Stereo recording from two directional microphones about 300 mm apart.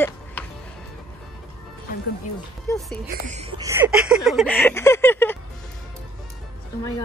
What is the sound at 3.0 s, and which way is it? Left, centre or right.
Speech, right.